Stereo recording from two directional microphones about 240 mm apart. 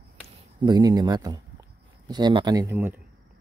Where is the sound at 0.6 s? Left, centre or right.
Centre.